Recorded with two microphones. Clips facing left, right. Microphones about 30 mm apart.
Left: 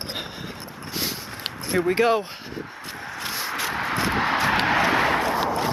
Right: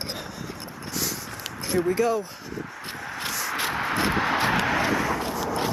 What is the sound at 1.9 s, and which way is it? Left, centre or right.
Speech, left.